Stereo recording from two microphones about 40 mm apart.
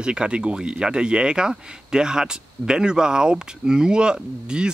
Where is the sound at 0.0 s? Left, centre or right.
Right.